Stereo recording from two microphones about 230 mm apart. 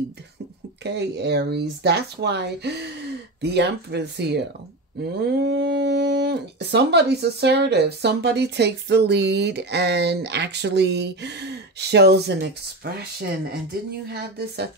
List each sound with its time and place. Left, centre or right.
0.8 s speech: right